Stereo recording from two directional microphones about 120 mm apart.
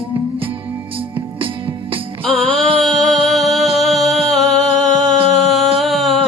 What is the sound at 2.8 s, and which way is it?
Music, 5° left (ahead or behind).